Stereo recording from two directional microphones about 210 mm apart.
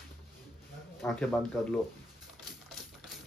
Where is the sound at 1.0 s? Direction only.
5° left (ahead or behind).